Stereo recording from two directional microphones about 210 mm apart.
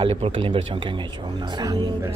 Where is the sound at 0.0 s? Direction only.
25° right (ahead or behind).